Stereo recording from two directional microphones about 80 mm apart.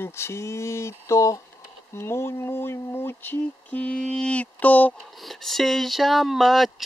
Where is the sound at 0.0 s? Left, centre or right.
Left.